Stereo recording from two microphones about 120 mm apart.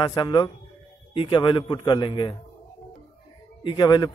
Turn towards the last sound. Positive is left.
turn(degrees=35)  # may be behind; listen again after turning